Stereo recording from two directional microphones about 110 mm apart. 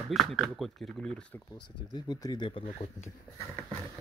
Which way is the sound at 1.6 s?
40° left (ahead or behind).